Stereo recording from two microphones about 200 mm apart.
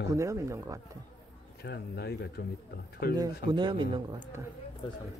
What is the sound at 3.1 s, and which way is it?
Speech, 20° right (ahead or behind).